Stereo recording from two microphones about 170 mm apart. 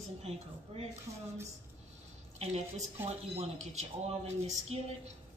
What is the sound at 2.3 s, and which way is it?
A woman's voice, 40° right (ahead or behind).